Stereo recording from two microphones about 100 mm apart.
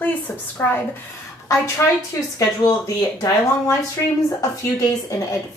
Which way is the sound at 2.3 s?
40° left (ahead or behind).